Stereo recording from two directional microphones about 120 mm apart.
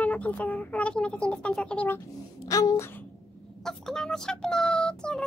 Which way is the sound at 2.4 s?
30° left (ahead or behind).